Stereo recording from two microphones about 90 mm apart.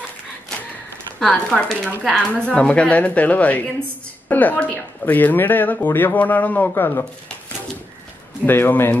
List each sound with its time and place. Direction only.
1.2 s a woman's voice: 10° left (ahead or behind); by 7.1 s 25° left (ahead or behind)
8.5 s speech: 25° left (ahead or behind)